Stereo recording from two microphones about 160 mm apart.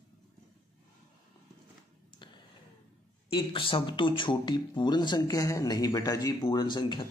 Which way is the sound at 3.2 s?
35° left (ahead or behind).